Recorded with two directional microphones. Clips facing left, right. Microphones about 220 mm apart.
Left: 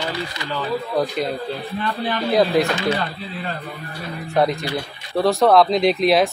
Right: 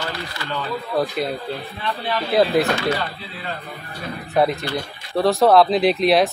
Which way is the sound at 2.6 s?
Centre (ahead or behind).